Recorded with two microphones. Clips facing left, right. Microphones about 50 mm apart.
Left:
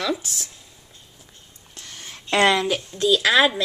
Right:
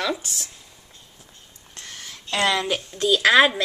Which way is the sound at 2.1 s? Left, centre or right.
Left.